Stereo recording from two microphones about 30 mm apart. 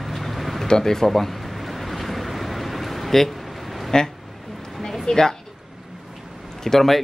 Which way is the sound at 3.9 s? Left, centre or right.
Left.